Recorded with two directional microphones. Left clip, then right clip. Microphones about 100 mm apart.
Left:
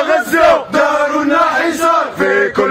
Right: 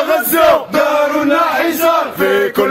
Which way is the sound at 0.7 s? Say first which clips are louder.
Even; 60° left (ahead or behind).